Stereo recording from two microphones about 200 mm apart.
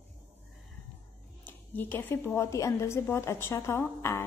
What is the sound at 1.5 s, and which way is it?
A woman's voice, 10° left (ahead or behind).